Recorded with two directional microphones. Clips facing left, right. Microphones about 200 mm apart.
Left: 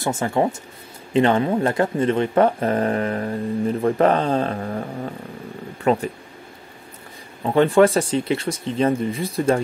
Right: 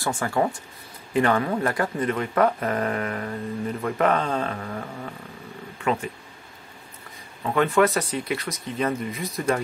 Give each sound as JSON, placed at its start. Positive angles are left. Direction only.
{"t": 0.0, "sound": "speech", "side_deg": 20}
{"t": 5.8, "sound": "a sound", "side_deg": 35}
{"t": 7.4, "sound": "speech", "side_deg": 30}